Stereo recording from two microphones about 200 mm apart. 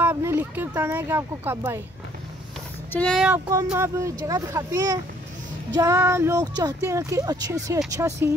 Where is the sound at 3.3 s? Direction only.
15° right (ahead or behind).